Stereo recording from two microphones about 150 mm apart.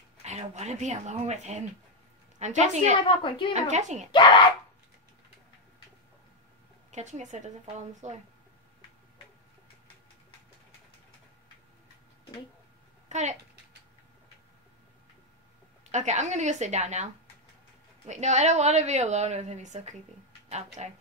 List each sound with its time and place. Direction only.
0.2 s a woman's voice: 50° right (ahead or behind)
3.1 s a woman's voice: 35° left (ahead or behind)
3.5 s a woman's voice: 50° right (ahead or behind)
4.1 s a woman's voice: 35° left (ahead or behind)
6.9 s a woman's voice: 50° right (ahead or behind)
13.1 s a woman's voice: 50° right (ahead or behind)
15.9 s a woman's voice: 50° right (ahead or behind)